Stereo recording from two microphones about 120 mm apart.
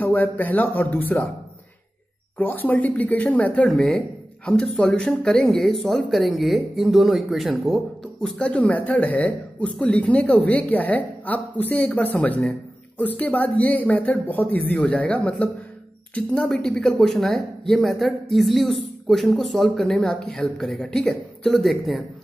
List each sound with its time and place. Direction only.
0.0 s speech: 15° left (ahead or behind)
2.3 s speech: 15° left (ahead or behind); by 22.0 s centre (ahead or behind)